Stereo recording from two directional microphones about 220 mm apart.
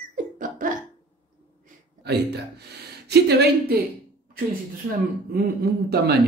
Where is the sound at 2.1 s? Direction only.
50° right (ahead or behind).